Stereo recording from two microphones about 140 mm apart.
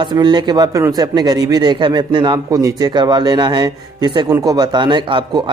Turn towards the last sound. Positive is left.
turn(degrees=-35)  # may be behind; listen again after turning